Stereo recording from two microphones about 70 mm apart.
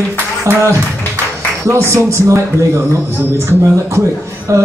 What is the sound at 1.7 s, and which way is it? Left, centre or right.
Speech, right.